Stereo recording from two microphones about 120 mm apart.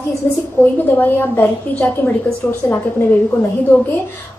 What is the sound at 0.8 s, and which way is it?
A woman's voice, 15° left (ahead or behind).